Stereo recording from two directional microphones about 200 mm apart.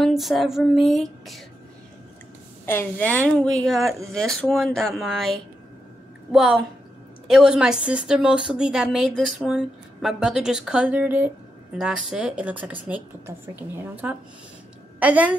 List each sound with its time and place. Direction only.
0.0 s a woman's voice: centre (ahead or behind)
2.6 s a woman's voice: 10° left (ahead or behind); by 15.3 s 5° right (ahead or behind)